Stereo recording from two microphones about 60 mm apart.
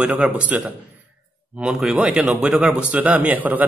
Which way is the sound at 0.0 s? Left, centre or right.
Right.